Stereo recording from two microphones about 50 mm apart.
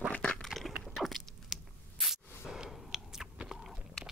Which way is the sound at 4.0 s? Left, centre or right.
Centre.